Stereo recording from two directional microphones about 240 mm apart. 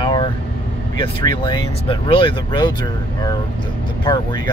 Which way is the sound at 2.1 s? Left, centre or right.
Left.